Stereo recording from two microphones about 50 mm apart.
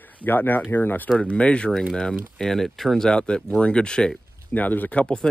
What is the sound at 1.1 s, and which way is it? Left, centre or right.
Speech, left.